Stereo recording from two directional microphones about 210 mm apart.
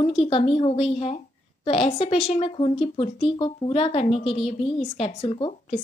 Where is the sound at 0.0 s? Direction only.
25° left (ahead or behind).